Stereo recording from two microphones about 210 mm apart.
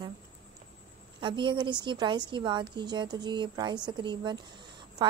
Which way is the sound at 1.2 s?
25° right (ahead or behind).